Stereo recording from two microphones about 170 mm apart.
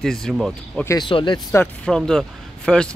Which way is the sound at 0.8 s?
20° left (ahead or behind).